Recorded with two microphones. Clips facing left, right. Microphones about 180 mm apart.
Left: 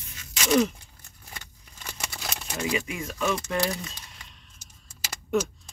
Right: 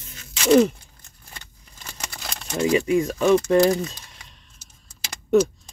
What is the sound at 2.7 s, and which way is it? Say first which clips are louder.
Speech: right 12 dB; 40° right (ahead or behind).